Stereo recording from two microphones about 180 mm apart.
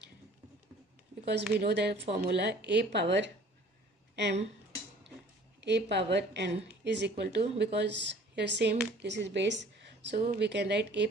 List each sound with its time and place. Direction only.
1.2 s speech: 70° right (ahead or behind)
4.1 s a sound: 70° right (ahead or behind)
5.6 s speech: 75° right (ahead or behind)